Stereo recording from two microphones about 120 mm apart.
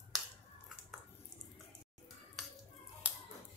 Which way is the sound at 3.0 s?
10° right (ahead or behind).